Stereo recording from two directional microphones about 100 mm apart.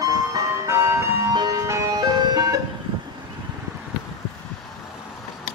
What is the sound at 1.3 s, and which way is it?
Ice cream truck, 40° right (ahead or behind).